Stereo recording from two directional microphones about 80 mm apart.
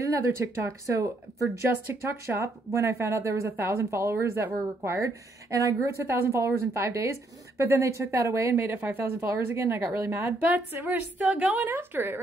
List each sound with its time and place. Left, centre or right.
0.0 s a woman's voice: right
10.4 s a woman's voice: right